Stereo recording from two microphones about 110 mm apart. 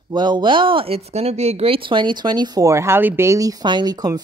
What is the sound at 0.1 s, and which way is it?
A woman's voice, 40° right (ahead or behind).